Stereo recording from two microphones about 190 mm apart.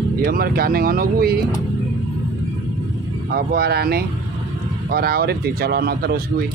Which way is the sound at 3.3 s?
55° right (ahead or behind).